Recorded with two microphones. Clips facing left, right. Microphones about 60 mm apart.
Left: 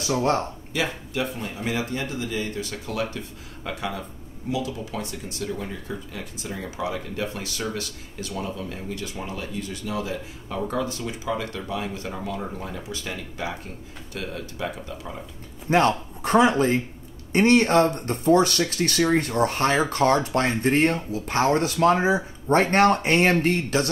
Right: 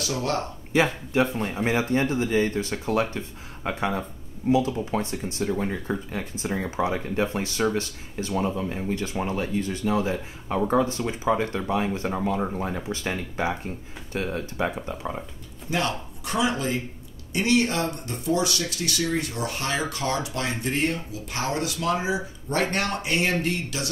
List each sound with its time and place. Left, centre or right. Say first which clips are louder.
0.0 s speech: left 4 dB; left
0.7 s speech: right 5 dB; right
15.7 s speech: left 7 dB; left